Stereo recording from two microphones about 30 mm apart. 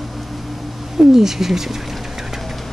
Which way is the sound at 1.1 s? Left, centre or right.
Centre.